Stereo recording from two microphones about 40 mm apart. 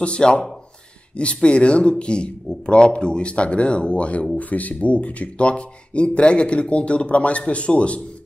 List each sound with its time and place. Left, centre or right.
0.0 s speech: left
4.4 s speech: left